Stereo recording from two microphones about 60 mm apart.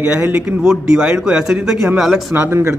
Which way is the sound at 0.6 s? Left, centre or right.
Centre.